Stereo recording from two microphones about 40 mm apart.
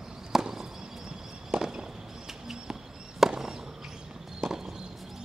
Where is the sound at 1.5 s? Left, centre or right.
Centre.